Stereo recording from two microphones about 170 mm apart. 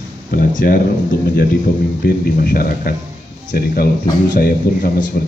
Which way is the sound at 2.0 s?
65° left (ahead or behind).